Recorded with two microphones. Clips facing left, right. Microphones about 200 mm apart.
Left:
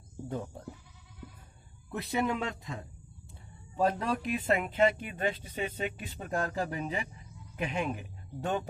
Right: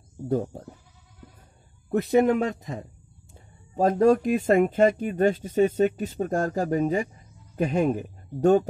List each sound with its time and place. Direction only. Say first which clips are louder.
0.3 s speech: right 12 dB; 40° right (ahead or behind)
1.9 s speech: right 11 dB; 50° right (ahead or behind)